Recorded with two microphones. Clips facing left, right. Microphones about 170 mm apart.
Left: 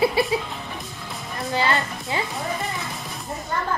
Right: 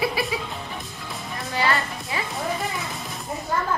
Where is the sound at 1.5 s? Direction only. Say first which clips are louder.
Left 1 dB; 20° left (ahead or behind).